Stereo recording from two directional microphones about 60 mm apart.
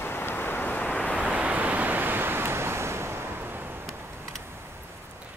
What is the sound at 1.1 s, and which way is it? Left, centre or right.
Waves, centre.